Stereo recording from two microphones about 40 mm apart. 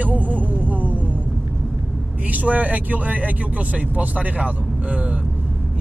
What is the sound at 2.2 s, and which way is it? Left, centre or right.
Speech, right.